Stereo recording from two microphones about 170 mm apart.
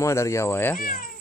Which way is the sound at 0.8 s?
55° left (ahead or behind).